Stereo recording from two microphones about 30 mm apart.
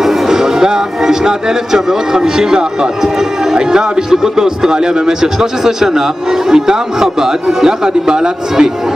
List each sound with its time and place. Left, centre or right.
0.3 s speech: centre